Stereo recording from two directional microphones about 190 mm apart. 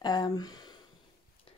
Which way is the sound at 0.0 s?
20° left (ahead or behind).